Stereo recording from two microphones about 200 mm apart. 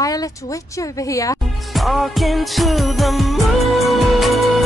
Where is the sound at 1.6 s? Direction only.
Centre (ahead or behind).